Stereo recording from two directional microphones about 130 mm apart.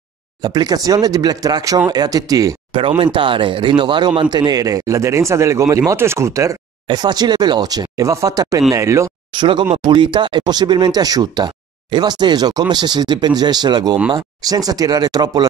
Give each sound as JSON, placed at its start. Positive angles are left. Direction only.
{"t": 0.4, "sound": "speech", "side_deg": -30}
{"t": 3.0, "sound": "speech", "side_deg": -40}
{"t": 6.9, "sound": "speech", "side_deg": -35}
{"t": 9.3, "sound": "speech", "side_deg": -35}